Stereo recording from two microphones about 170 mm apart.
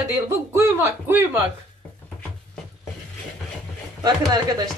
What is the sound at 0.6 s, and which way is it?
Speech, 15° right (ahead or behind).